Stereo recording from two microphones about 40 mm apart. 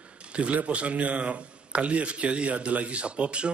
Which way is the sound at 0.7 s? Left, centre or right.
Right.